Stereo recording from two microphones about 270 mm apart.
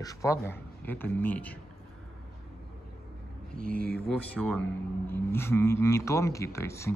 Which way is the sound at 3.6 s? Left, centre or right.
Right.